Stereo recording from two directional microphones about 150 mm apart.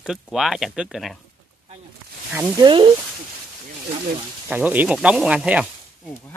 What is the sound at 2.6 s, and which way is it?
Speech, 35° right (ahead or behind).